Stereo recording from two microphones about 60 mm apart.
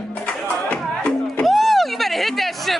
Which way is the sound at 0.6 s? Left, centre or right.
Centre.